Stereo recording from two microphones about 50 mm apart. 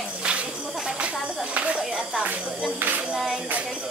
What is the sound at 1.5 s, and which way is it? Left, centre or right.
Music, right.